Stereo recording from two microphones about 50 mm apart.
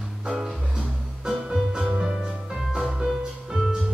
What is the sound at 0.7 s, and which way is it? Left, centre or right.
Music, centre.